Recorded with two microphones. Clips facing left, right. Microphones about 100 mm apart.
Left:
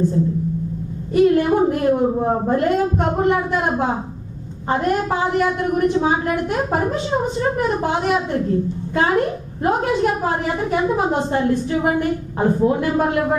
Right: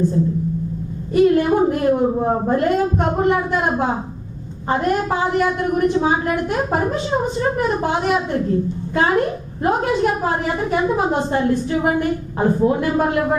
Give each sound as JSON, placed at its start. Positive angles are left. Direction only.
{"t": 1.1, "sound": "a woman's voice", "side_deg": -15}